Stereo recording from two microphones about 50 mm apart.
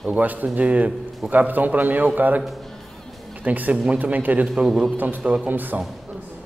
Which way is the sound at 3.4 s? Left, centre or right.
Right.